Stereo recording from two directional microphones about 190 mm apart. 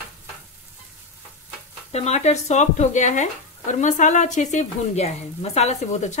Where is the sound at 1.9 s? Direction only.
35° left (ahead or behind).